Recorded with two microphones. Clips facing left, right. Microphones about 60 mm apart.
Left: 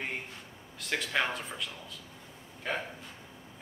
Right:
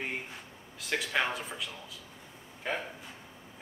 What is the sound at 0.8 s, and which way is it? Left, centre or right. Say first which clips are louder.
A man's voice: even; centre.